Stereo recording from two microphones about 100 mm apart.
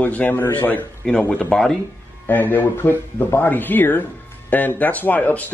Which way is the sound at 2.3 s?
20° left (ahead or behind).